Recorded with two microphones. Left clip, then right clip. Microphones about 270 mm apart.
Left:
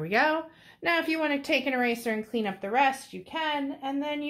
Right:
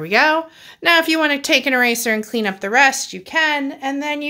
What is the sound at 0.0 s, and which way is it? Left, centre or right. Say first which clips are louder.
A woman's voice: right 10 dB; centre.